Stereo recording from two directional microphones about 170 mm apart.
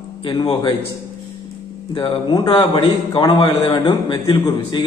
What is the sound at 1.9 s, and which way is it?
A man's voice, 30° left (ahead or behind).